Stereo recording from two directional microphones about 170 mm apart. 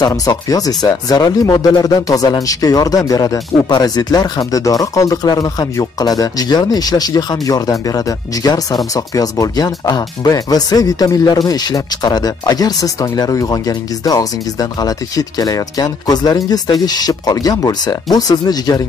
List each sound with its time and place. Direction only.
0.0 s speech: 20° left (ahead or behind)